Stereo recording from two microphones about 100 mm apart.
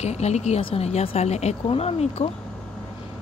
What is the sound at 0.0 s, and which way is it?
Speech, 90° left.